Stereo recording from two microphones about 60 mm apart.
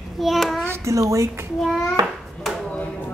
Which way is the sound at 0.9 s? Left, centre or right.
Right.